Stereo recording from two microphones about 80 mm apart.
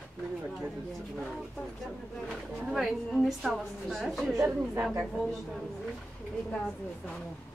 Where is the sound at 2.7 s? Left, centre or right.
Centre.